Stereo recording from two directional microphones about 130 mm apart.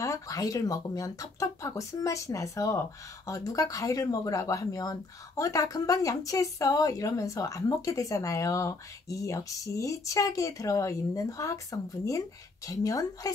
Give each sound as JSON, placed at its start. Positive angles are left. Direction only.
{"t": 0.0, "sound": "speech", "side_deg": 25}